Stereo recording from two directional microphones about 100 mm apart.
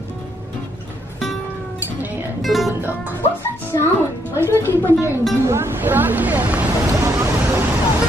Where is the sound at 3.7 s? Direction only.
35° left (ahead or behind).